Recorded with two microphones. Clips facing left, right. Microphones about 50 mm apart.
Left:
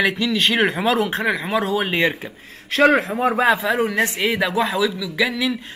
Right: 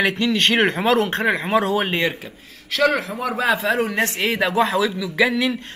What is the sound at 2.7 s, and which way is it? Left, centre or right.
Speech, left.